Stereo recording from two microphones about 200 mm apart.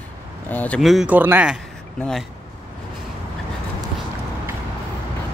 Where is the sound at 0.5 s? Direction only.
5° left (ahead or behind).